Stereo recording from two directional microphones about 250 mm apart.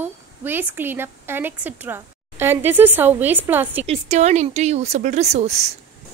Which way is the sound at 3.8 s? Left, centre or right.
Right.